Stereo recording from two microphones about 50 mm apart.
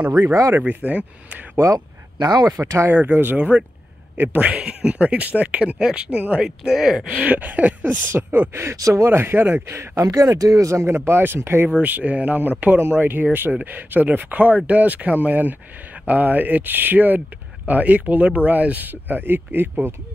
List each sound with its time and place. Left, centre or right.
0.2 s speech: right
0.6 s speech: right
2.5 s speech: right
2.9 s speech: right
4.4 s speech: right
7.2 s speech: right
8.5 s speech: right
9.1 s speech: right
9.8 s speech: right
11.7 s speech: right